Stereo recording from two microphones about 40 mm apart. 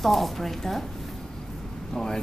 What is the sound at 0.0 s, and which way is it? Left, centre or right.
Speech, centre.